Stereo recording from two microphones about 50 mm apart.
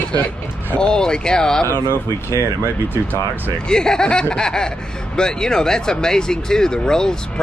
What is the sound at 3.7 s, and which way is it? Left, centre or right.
Speech, centre.